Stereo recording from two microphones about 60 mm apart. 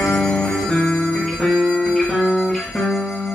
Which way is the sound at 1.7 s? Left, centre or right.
Centre.